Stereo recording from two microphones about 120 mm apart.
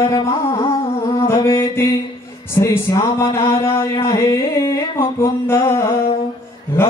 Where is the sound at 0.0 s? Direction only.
40° left (ahead or behind).